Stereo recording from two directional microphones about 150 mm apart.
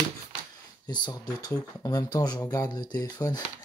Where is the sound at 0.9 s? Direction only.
30° left (ahead or behind).